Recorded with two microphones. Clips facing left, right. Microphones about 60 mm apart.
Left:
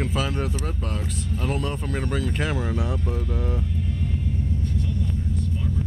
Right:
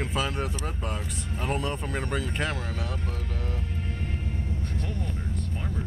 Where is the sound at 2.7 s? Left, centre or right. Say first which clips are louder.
Left 7 dB; centre.